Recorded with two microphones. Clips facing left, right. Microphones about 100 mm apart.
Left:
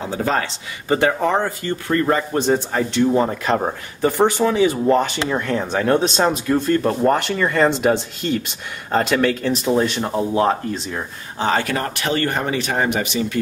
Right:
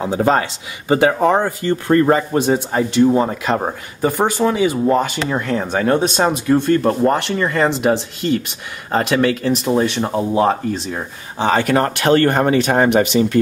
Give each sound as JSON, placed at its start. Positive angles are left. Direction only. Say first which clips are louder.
{"t": 0.2, "sound": "speech", "louder": "right 5 dB", "side_deg": -30}
{"t": 0.8, "sound": "speech", "louder": "right 4 dB", "side_deg": -20}
{"t": 1.4, "sound": "speech", "louder": "right 4 dB", "side_deg": -35}
{"t": 2.3, "sound": "speech", "louder": "right 2 dB", "side_deg": -10}
{"t": 11.3, "sound": "speech", "louder": "right 3 dB", "side_deg": -20}
{"t": 11.7, "sound": "speech", "louder": "right 8 dB", "side_deg": -45}